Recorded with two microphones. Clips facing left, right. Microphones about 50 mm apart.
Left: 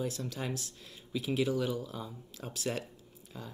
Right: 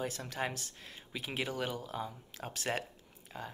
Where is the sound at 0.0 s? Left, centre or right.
Right.